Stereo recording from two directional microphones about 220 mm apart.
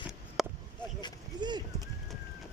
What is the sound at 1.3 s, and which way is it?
Clip-clop, 20° right (ahead or behind).